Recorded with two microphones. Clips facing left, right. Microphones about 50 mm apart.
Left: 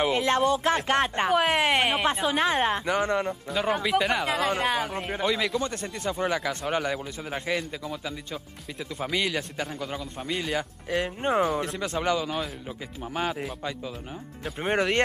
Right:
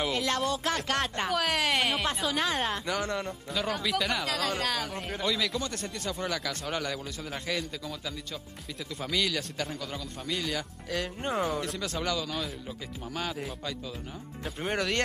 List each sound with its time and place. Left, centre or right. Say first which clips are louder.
0.0 s speech: left 6 dB; left
14.6 s speech: left 5 dB; left